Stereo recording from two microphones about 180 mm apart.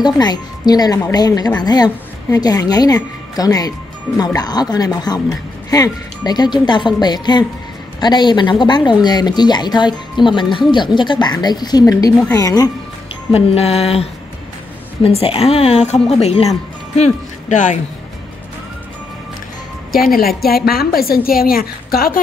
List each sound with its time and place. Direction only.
0.0 s a woman's voice: 25° left (ahead or behind)
13.3 s a woman's voice: 35° left (ahead or behind)
15.0 s a woman's voice: 35° left (ahead or behind)
20.2 s a woman's voice: 55° left (ahead or behind)